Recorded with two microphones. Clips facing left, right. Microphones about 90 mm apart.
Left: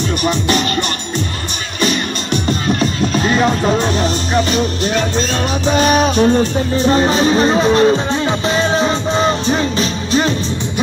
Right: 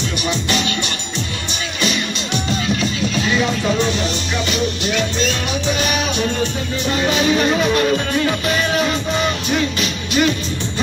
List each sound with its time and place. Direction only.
0.2 s music: 45° left (ahead or behind)
2.6 s music: 45° left (ahead or behind)